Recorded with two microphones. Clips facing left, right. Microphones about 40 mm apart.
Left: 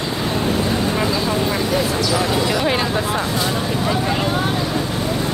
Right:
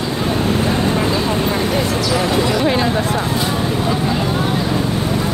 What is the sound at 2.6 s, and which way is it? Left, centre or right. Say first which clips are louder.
Speech: right 3 dB; centre.